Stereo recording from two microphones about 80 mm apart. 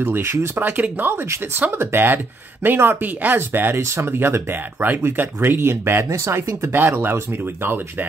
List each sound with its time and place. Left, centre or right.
0.0 s speech: right
6.7 s speech: right